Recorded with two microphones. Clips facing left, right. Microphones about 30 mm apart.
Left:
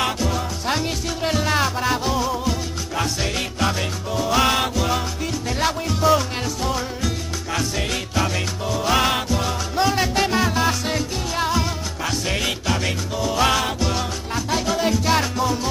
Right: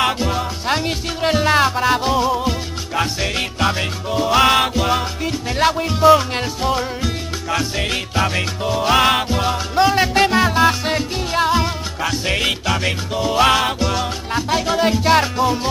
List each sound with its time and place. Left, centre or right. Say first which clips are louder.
0.0 s music: right 4 dB; right